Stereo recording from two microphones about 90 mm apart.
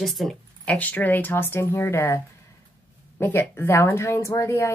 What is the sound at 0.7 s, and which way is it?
Speech, 20° left (ahead or behind).